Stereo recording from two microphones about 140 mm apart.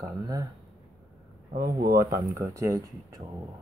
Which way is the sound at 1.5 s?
90° right.